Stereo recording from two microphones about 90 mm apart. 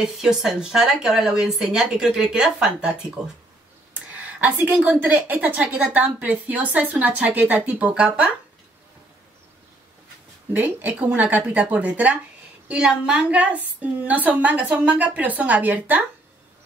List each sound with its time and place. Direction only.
0.0 s a woman's voice: 5° right (ahead or behind)
10.5 s a woman's voice: 20° right (ahead or behind)